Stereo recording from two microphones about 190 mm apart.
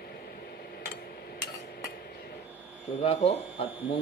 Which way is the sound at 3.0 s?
30° left (ahead or behind).